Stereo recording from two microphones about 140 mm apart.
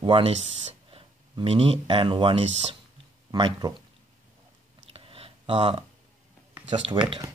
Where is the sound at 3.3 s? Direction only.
30° right (ahead or behind).